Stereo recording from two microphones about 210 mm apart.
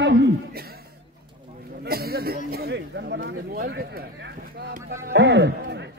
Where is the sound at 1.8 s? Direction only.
45° right (ahead or behind).